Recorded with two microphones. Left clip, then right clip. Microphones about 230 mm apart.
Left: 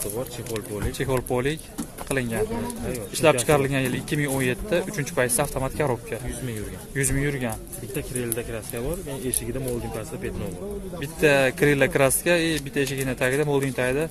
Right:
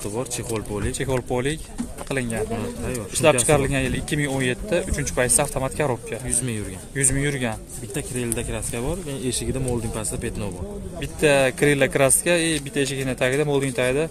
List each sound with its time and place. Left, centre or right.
0.9 s a man's voice: centre
7.0 s speech: centre
7.9 s speech: right
11.0 s a man's voice: centre